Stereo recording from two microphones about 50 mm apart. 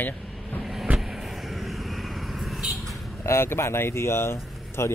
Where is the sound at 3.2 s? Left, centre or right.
Left.